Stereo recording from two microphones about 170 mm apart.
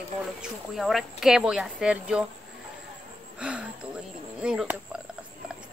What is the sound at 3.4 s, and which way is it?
Speech, 5° right (ahead or behind).